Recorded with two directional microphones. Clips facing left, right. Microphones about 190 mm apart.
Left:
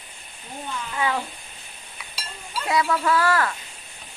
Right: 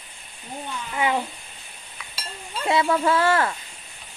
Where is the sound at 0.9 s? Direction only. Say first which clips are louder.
Right 2 dB; 20° right (ahead or behind).